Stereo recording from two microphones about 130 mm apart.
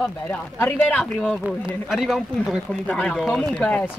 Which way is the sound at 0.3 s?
15° left (ahead or behind).